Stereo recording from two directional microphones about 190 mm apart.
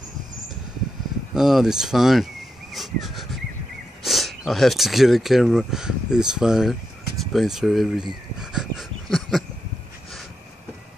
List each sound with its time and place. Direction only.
1.3 s speech: centre (ahead or behind)
8.4 s dog: 5° right (ahead or behind)